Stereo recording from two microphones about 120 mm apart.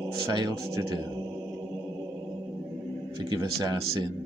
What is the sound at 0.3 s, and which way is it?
Speech, 40° right (ahead or behind).